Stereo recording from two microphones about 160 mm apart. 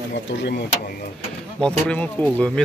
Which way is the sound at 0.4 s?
90° left.